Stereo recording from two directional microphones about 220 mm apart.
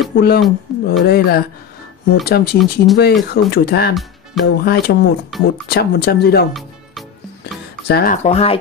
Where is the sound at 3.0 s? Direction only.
45° left (ahead or behind).